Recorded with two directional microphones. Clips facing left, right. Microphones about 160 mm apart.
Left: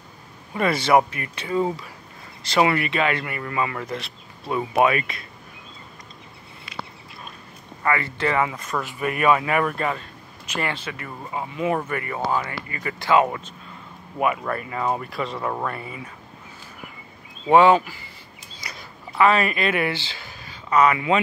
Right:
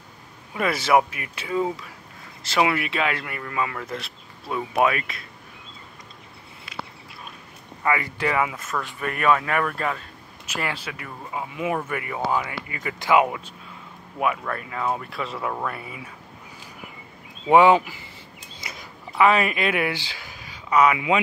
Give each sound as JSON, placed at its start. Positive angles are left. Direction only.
{"t": 0.6, "sound": "a man's voice", "side_deg": -5}
{"t": 7.8, "sound": "speech", "side_deg": -10}
{"t": 8.7, "sound": "a man's voice", "side_deg": 10}
{"t": 14.1, "sound": "a man's voice", "side_deg": 5}
{"t": 17.5, "sound": "speech", "side_deg": -15}
{"t": 18.6, "sound": "a sound", "side_deg": -25}
{"t": 19.1, "sound": "speech", "side_deg": -10}